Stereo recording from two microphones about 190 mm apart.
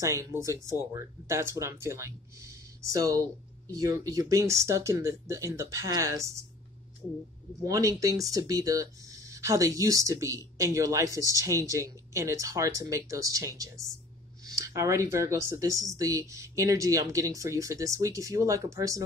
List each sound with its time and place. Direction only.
0.0 s speech: 15° right (ahead or behind)
7.6 s speech: 20° right (ahead or behind)